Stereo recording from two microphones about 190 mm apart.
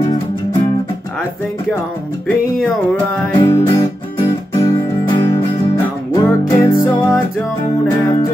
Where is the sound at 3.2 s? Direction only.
15° left (ahead or behind).